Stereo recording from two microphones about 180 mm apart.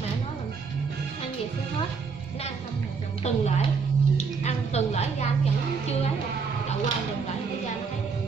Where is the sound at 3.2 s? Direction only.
40° left (ahead or behind).